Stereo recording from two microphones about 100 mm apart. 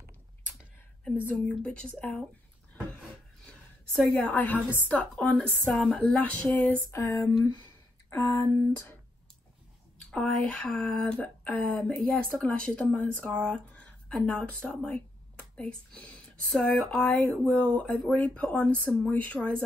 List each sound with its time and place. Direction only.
1.2 s speech: 15° left (ahead or behind)
3.4 s a sound: 5° left (ahead or behind)
4.7 s speech: 15° left (ahead or behind)
6.9 s speech: 30° left (ahead or behind)
9.9 s speech: 10° left (ahead or behind)